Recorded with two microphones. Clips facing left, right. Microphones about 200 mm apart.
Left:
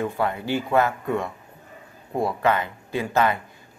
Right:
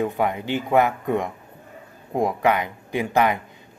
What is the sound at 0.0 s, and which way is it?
Speech, 15° right (ahead or behind).